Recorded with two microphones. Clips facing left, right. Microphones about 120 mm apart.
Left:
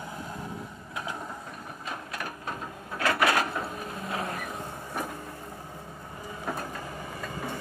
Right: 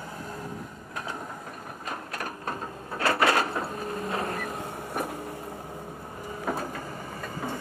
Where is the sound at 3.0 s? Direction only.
30° right (ahead or behind).